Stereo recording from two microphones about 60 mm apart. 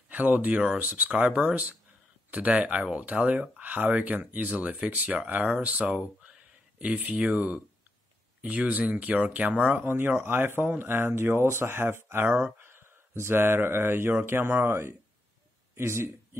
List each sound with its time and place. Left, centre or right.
0.1 s speech: right
9.8 s speech: right